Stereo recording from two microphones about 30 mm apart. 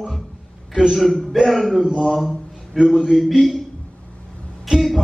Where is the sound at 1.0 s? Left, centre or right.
Centre.